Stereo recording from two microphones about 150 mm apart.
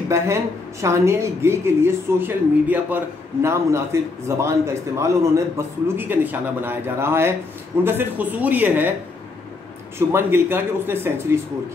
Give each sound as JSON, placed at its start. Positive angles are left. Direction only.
{"t": 0.1, "sound": "a man's voice", "side_deg": -20}
{"t": 9.9, "sound": "a man's voice", "side_deg": -15}